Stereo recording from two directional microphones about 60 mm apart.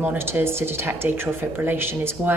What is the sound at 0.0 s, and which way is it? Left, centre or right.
Speech, right.